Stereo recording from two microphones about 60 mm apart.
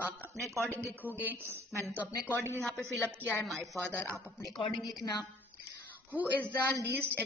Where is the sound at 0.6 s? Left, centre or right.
Right.